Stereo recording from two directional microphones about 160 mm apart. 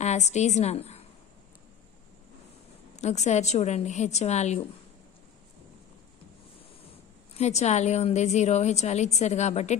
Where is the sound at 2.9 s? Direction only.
45° left (ahead or behind).